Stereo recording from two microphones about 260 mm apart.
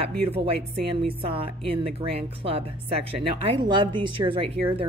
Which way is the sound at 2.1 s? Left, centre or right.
Right.